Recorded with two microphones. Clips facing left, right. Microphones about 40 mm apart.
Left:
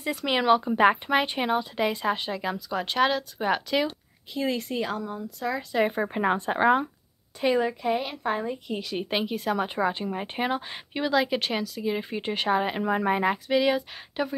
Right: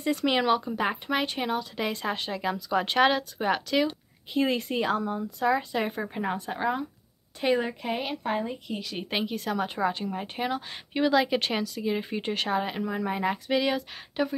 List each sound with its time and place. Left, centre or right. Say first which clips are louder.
0.0 s a woman's voice: even; centre
1.8 s speech: left 4 dB; centre
3.4 s speech: even; centre
4.3 s a woman's voice: right 2 dB; centre
5.7 s speech: left 4 dB; centre
6.0 s speech: left 5 dB; left
7.3 s a woman's voice: left 2 dB; centre
10.9 s speech: right 1 dB; centre
12.8 s speech: left 5 dB; left
13.2 s speech: left 3 dB; centre